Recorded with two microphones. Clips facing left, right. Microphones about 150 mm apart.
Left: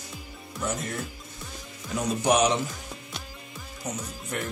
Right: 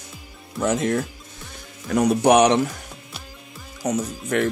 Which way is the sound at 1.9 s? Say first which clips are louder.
Right 8 dB; 65° right (ahead or behind).